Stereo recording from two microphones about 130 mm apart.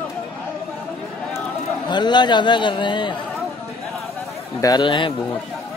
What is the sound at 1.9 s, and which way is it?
A man's voice, 35° left (ahead or behind).